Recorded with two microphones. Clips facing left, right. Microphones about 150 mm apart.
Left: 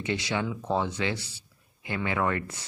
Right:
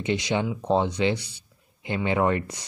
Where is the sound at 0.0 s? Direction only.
20° right (ahead or behind).